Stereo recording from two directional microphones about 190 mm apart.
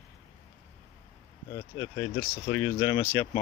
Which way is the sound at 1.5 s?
20° left (ahead or behind).